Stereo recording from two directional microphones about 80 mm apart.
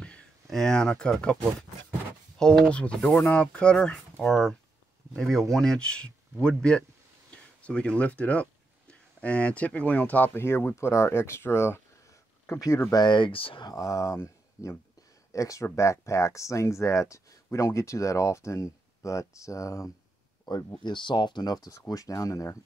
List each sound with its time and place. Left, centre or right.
0.0 s speech: centre; by 11.8 s left
12.9 s speech: left
13.7 s speech: left
20.5 s speech: left
20.8 s speech: left